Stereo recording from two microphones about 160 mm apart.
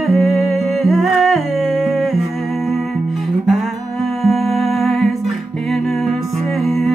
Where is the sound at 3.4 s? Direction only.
Centre (ahead or behind).